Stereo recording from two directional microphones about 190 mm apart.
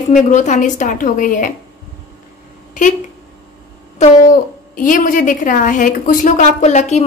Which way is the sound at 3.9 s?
35° left (ahead or behind).